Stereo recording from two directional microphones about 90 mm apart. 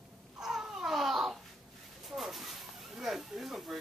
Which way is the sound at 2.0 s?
Centre (ahead or behind).